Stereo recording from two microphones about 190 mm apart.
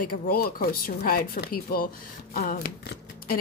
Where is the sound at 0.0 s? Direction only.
50° left (ahead or behind).